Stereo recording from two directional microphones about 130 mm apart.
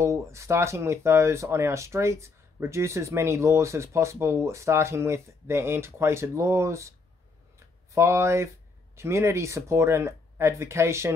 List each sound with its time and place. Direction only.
0.0 s speech: 20° right (ahead or behind)
7.5 s a sound: 20° right (ahead or behind)
8.9 s speech: 20° right (ahead or behind)